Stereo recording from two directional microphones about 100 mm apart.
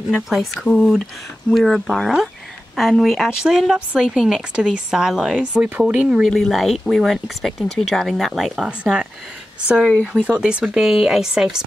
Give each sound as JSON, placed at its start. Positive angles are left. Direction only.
{"t": 0.3, "sound": "a woman's voice", "side_deg": 0}
{"t": 10.2, "sound": "a woman's voice", "side_deg": -10}